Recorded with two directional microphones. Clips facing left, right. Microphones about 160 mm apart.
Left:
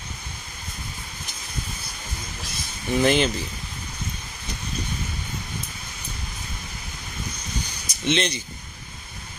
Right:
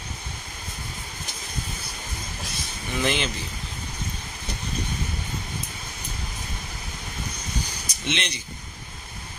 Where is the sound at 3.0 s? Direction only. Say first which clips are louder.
Left 6 dB; 40° left (ahead or behind).